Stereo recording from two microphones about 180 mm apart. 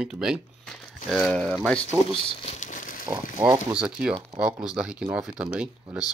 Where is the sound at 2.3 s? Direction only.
40° left (ahead or behind).